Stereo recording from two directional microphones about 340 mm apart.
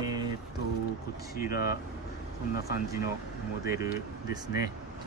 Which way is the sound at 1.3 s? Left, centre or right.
Left.